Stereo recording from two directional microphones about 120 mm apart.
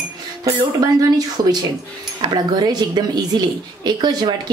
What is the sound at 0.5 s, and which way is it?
A woman's voice, 30° right (ahead or behind).